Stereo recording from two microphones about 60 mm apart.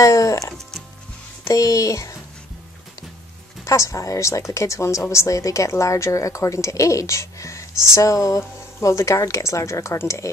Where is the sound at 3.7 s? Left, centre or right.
Left.